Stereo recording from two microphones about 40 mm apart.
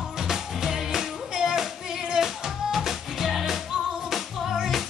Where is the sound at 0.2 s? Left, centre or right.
Centre.